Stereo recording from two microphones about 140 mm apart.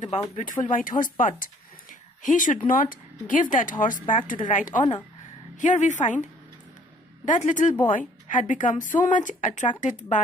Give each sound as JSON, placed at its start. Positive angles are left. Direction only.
{"t": 0.0, "sound": "speech", "side_deg": 60}
{"t": 7.2, "sound": "speech", "side_deg": 60}